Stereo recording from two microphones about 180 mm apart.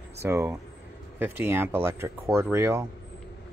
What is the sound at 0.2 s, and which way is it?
Speech, 15° right (ahead or behind).